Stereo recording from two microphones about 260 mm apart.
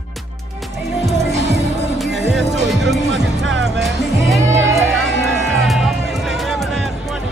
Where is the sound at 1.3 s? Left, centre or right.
Right.